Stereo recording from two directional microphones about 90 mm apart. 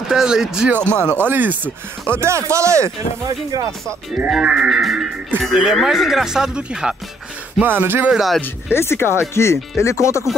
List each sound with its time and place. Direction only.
0.1 s speech: 5° right (ahead or behind)
1.0 s speech: 25° right (ahead or behind)
4.3 s speech: 10° right (ahead or behind)
7.8 s speech: 25° right (ahead or behind)
8.1 s speech: 5° right (ahead or behind)
8.4 s speech: 25° left (ahead or behind)